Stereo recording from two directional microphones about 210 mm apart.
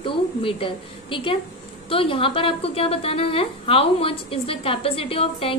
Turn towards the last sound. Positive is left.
turn(degrees=25)  # may be behind; listen again after turning